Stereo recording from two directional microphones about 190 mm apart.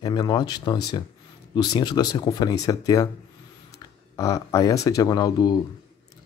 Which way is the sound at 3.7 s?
15° left (ahead or behind).